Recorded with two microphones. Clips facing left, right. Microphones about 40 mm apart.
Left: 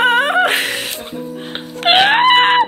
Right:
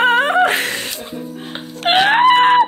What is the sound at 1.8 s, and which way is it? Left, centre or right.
Screaming, left.